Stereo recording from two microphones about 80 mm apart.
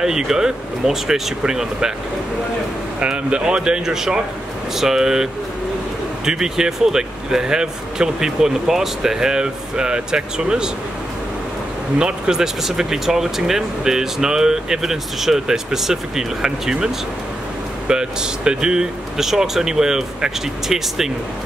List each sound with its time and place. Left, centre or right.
0.0 s speech: centre
3.0 s speech: centre
12.0 s speech: centre